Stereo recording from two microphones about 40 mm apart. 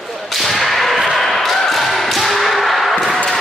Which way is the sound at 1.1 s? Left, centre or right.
Centre.